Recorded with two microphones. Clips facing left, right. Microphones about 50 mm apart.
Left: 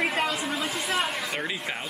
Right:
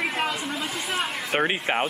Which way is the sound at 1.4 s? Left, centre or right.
Right.